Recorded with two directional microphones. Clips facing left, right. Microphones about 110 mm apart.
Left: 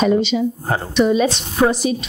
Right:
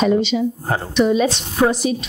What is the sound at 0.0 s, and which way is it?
A woman's voice, 20° left (ahead or behind).